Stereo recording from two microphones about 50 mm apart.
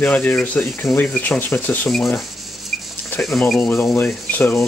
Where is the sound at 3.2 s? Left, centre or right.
Centre.